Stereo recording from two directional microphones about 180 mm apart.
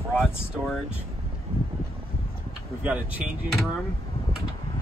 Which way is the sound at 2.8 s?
10° right (ahead or behind).